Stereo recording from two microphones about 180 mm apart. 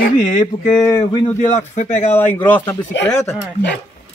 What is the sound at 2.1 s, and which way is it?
Speech, 10° left (ahead or behind).